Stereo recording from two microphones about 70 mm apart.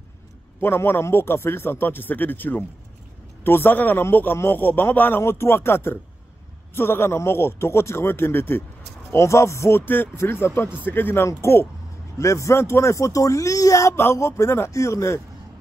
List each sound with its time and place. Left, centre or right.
0.6 s speech: left
9.1 s speech: left